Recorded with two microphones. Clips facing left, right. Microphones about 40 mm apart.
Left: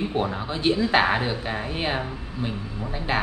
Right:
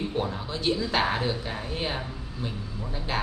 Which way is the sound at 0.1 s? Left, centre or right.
Left.